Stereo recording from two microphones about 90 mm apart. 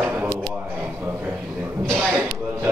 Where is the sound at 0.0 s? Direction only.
20° right (ahead or behind).